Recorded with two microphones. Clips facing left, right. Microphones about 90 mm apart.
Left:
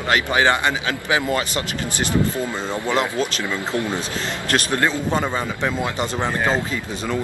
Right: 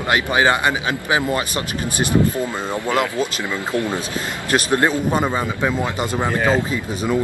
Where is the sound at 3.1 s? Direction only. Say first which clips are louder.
Right 1 dB; 15° right (ahead or behind).